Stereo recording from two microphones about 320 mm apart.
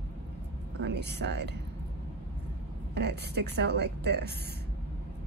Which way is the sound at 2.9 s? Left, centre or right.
Right.